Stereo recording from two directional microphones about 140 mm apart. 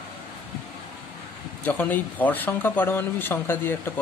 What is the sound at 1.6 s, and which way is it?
Speech, 15° left (ahead or behind).